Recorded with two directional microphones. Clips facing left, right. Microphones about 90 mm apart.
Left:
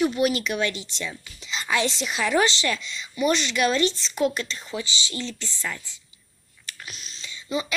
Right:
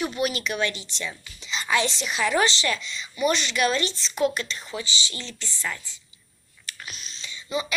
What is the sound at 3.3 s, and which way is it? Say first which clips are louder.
Speech: left 2 dB; 5° right (ahead or behind).